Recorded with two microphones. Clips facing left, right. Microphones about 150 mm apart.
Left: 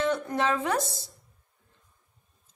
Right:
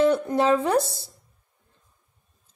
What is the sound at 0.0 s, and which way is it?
Speech, 35° right (ahead or behind).